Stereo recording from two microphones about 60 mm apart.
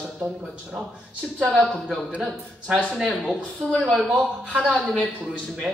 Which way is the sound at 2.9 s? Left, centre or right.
Centre.